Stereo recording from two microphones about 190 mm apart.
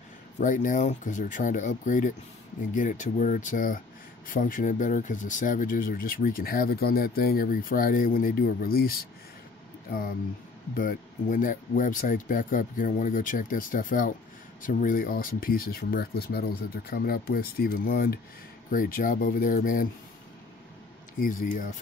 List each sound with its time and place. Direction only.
0.4 s speech: 45° left (ahead or behind)
21.2 s speech: 45° left (ahead or behind)